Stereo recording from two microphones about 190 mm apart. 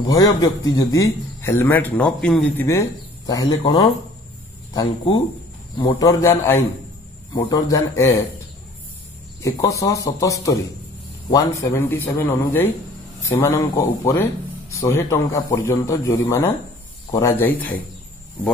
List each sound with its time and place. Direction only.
0.0 s a man's voice: 20° left (ahead or behind)
9.4 s a man's voice: 15° left (ahead or behind)